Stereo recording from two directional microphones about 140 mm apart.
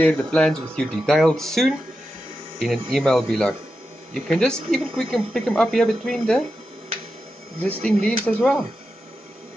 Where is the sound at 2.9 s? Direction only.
5° left (ahead or behind).